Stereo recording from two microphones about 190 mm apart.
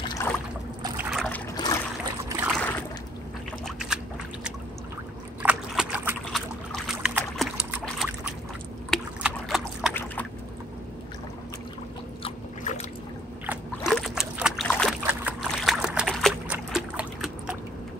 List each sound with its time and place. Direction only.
0.2 s boat: 15° left (ahead or behind)
0.8 s boat: 10° right (ahead or behind)
1.1 s trickle: 5° left (ahead or behind)
1.5 s trickle: 20° left (ahead or behind)
2.2 s boat: 10° right (ahead or behind)
2.5 s a sound: 10° left (ahead or behind)
5.4 s a sound: 5° right (ahead or behind)
6.3 s boat: centre (ahead or behind)
8.9 s trickle: centre (ahead or behind)
12.2 s a sound: 30° left (ahead or behind)
13.5 s boat: centre (ahead or behind)
16.7 s trickle: 5° right (ahead or behind)